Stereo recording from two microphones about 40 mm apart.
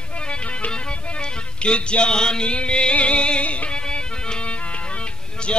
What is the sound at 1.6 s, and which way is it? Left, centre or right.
Music, left.